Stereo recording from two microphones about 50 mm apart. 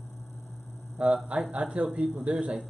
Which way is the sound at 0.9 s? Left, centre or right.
Right.